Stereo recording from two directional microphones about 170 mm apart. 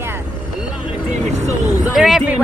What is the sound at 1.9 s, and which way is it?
Speech, centre (ahead or behind).